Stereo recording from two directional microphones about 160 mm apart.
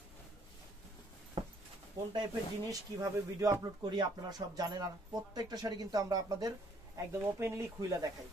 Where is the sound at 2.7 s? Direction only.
20° right (ahead or behind).